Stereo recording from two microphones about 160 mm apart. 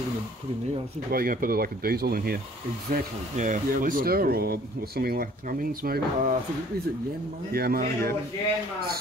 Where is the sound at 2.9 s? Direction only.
55° right (ahead or behind); by 5.2 s 75° right (ahead or behind).